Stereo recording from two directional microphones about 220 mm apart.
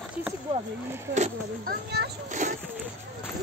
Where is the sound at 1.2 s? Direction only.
45° right (ahead or behind).